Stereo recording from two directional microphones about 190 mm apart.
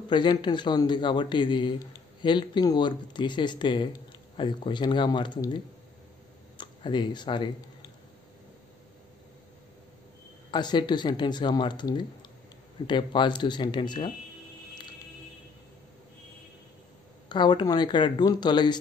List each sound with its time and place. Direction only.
0.1 s speech: 25° left (ahead or behind)
6.6 s speech: 25° left (ahead or behind)
10.5 s speech: 25° left (ahead or behind)
17.3 s speech: 25° left (ahead or behind)